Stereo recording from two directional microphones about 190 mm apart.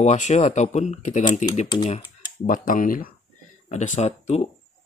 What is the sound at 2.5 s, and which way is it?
Speech, 45° left (ahead or behind).